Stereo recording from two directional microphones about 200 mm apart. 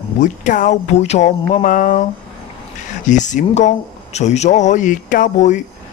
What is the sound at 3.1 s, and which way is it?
Speech, 40° left (ahead or behind).